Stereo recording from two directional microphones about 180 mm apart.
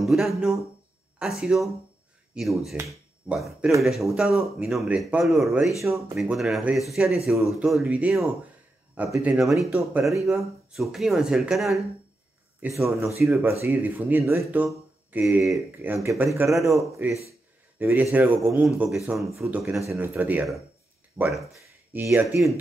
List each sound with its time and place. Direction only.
0.0 s speech: centre (ahead or behind)
12.7 s speech: 15° right (ahead or behind); by 16.3 s centre (ahead or behind)
16.3 s speech: 15° right (ahead or behind); by 21.5 s centre (ahead or behind)
21.5 s speech: 15° right (ahead or behind)